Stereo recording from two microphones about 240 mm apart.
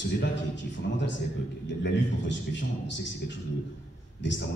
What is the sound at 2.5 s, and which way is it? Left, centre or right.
A man's voice, left.